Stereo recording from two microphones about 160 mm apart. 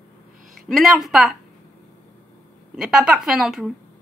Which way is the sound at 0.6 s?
Centre (ahead or behind).